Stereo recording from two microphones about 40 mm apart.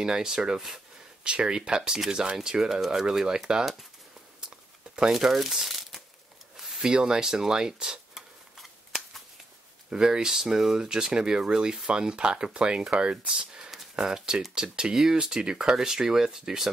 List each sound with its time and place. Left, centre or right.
0.0 s speech: centre
1.8 s speech: centre
2.0 s speech: right
5.1 s speech: centre
6.5 s a sound: centre
6.8 s speech: centre
8.5 s a sound: centre
9.8 s speech: centre